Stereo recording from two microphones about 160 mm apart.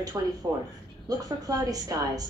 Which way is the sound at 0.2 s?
20° right (ahead or behind).